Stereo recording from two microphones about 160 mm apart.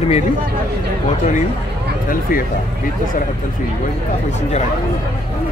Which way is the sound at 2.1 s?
65° left (ahead or behind).